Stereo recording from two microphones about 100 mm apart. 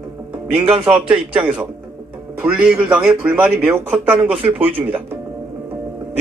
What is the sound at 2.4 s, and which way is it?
A man's voice, 10° right (ahead or behind).